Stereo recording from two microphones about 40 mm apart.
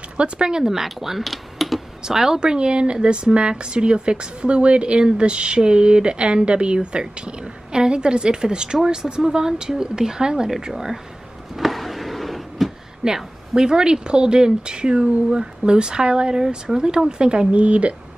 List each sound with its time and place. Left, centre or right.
0.2 s speech: centre
2.0 s a woman's voice: centre
11.5 s a sound: centre
13.0 s a woman's voice: right